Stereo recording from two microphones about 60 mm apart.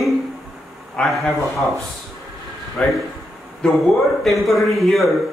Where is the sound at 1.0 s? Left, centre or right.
Centre.